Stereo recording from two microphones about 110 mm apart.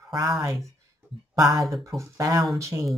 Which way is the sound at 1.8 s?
25° right (ahead or behind).